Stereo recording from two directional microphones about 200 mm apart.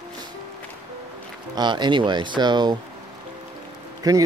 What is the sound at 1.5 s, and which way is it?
Speech, 20° right (ahead or behind).